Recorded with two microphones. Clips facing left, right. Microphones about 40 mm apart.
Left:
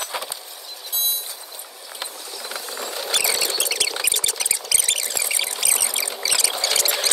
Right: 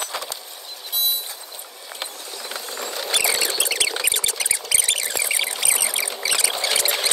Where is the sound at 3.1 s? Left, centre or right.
Centre.